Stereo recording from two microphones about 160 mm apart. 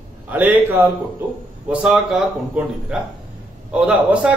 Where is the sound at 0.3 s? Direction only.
10° right (ahead or behind).